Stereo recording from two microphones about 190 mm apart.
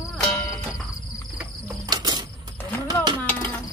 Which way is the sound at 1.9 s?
20° right (ahead or behind).